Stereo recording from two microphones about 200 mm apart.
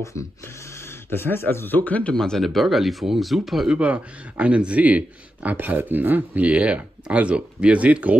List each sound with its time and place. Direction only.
1.1 s a man's voice: 10° left (ahead or behind); by 8.2 s 5° right (ahead or behind)